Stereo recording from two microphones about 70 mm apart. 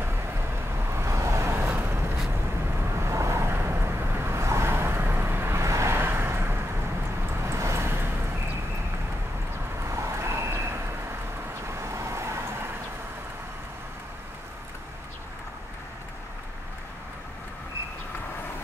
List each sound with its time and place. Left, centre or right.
0.8 s vehicle: right
1.6 s vehicle: right
3.0 s vehicle: right
9.8 s vehicle: right